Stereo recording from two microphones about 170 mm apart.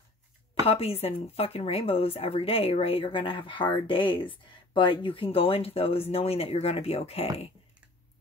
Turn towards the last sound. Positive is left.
turn(degrees=35)  # may be behind; listen again after turning